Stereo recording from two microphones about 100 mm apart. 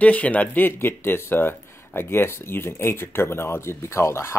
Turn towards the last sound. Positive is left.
turn(degrees=25)  # may be behind; listen again after turning